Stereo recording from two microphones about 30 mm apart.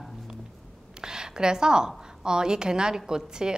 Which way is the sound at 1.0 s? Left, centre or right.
Right.